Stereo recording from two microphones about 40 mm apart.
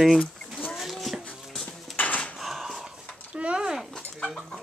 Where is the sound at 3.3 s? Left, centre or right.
Right.